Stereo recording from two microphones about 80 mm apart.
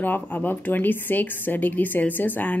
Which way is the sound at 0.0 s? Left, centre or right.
Left.